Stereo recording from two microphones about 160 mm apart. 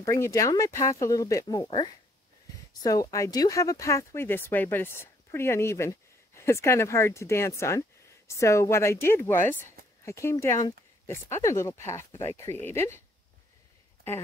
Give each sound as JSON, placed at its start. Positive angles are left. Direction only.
{"t": 0.0, "sound": "speech", "side_deg": 20}